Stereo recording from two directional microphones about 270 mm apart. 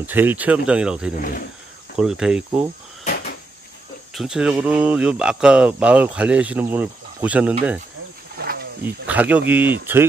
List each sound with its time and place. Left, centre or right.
0.0 s speech: centre
3.0 s cupboard open or close: left
4.1 s speech: centre
8.4 s wild animals: right
8.8 s speech: centre